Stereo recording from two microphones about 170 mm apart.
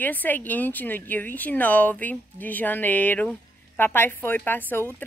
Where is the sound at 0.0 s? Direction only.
10° left (ahead or behind).